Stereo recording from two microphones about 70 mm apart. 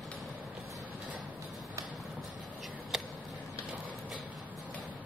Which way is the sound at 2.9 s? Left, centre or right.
Centre.